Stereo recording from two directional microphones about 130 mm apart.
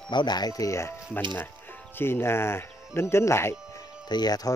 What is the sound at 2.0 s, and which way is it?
Speech, 20° left (ahead or behind).